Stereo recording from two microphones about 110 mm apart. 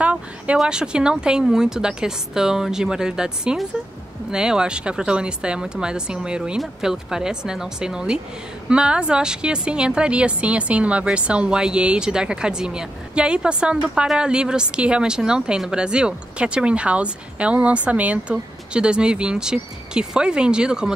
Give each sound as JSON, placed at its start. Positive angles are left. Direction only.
{"t": 0.0, "sound": "a woman's voice", "side_deg": -10}